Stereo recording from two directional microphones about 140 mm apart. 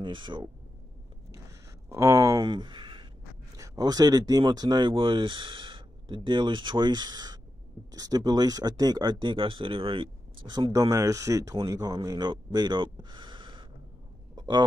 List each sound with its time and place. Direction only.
0.0 s speech: 35° right (ahead or behind)
1.9 s speech: 20° right (ahead or behind)
2.4 s speech: 35° right (ahead or behind)
3.5 s speech: 25° right (ahead or behind)
14.3 s a sound: 30° right (ahead or behind)